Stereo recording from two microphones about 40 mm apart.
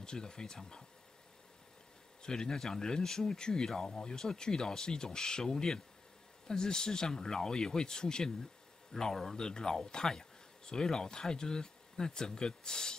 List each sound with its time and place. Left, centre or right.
0.0 s speech: centre
2.2 s speech: centre